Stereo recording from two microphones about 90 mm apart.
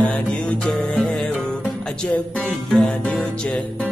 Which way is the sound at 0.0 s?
15° left (ahead or behind).